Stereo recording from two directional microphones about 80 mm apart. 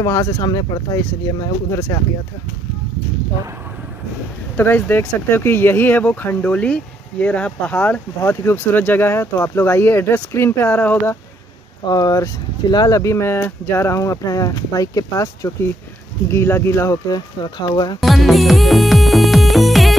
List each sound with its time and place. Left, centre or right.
0.0 s speech: left
0.9 s speech: left
4.6 s speech: left
8.2 s speech: left
8.7 s speech: left
11.8 s speech: left
16.3 s speech: left
16.9 s speech: left
18.0 s music: centre